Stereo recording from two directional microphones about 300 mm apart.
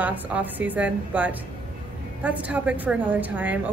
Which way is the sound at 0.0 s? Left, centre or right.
Centre.